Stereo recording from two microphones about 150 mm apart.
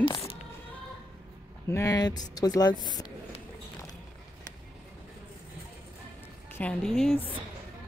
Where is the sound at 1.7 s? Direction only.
20° left (ahead or behind).